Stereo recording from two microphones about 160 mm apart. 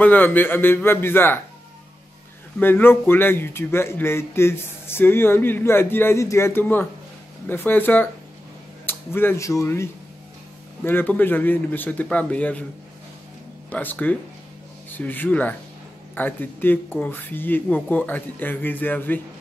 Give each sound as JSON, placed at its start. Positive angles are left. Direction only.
{"t": 0.0, "sound": "a man's voice", "side_deg": 10}
{"t": 2.6, "sound": "a man's voice", "side_deg": 15}
{"t": 13.7, "sound": "a man's voice", "side_deg": 10}